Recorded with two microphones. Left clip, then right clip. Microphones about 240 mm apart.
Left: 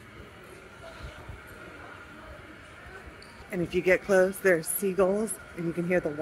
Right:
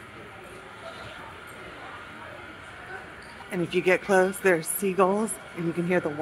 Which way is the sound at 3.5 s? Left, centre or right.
Centre.